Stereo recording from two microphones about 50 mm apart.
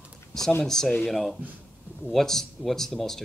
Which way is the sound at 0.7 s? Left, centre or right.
Centre.